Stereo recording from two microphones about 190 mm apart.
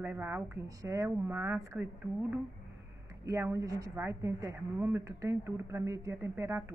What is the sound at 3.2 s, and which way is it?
A woman's voice, 15° right (ahead or behind).